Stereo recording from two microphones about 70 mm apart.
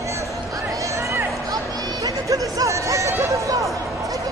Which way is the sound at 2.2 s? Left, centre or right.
Right.